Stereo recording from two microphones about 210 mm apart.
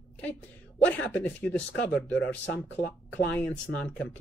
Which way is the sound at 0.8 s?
5° left (ahead or behind).